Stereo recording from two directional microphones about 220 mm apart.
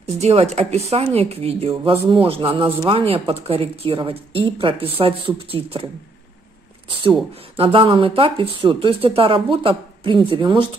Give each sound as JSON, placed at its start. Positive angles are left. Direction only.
{"t": 0.0, "sound": "speech", "side_deg": -30}
{"t": 7.0, "sound": "speech", "side_deg": -25}